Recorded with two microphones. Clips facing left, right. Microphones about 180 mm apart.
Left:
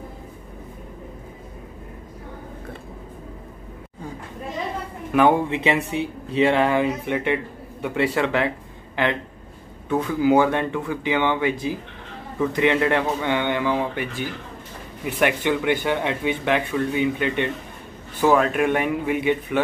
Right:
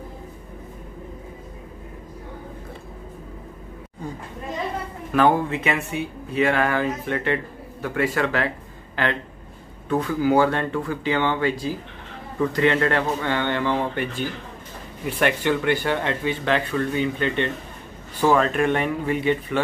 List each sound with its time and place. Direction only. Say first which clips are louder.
5.1 s speech: left 1 dB; 15° left (ahead or behind)
9.8 s speech: left 1 dB; 20° left (ahead or behind)